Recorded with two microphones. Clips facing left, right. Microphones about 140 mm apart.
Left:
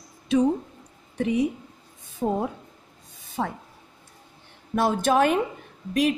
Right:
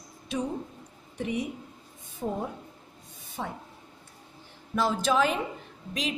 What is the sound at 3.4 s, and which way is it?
Speech, 70° left (ahead or behind).